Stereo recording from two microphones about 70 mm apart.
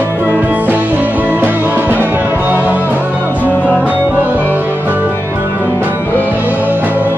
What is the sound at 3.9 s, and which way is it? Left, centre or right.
Music, right.